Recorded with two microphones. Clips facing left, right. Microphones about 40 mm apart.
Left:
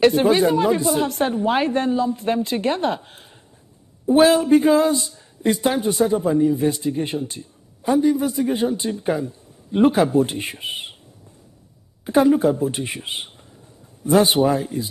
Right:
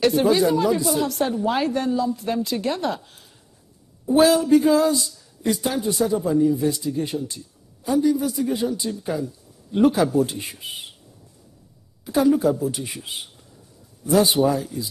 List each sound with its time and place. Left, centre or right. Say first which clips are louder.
0.0 s speech: left 2 dB; left
12.0 s speech: left 3 dB; left